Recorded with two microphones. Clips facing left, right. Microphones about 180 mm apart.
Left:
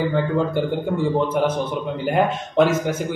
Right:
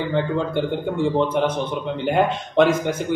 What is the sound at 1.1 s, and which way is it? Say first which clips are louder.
A man's voice: even; 5° left (ahead or behind).